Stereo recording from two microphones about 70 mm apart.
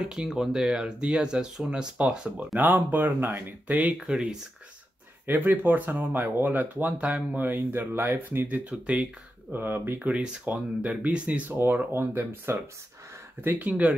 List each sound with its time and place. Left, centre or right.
0.3 s speech: centre
2.6 s speech: right
4.0 s speech: centre
5.2 s speech: right
9.5 s speech: right
9.9 s speech: centre